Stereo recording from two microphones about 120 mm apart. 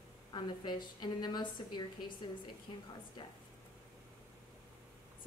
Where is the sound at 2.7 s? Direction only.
50° left (ahead or behind).